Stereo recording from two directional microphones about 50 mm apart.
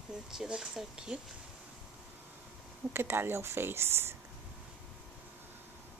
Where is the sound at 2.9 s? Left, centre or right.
Right.